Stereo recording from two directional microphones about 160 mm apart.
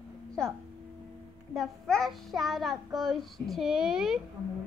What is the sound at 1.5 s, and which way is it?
Child singing, centre (ahead or behind).